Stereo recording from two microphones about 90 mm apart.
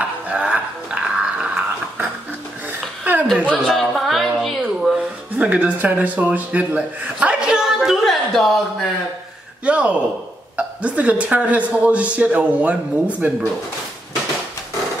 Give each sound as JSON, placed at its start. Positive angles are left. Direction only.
{"t": 0.0, "sound": "dog", "side_deg": -15}
{"t": 3.0, "sound": "a sound", "side_deg": -20}
{"t": 3.3, "sound": "a man's voice", "side_deg": -15}
{"t": 3.6, "sound": "a sound", "side_deg": 0}
{"t": 5.4, "sound": "a man's voice", "side_deg": -20}
{"t": 9.7, "sound": "a man's voice", "side_deg": -15}